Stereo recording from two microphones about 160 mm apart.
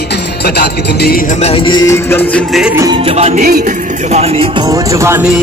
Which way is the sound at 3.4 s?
60° right (ahead or behind).